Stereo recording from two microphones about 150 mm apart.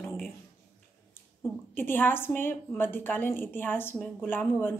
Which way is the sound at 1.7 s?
15° left (ahead or behind).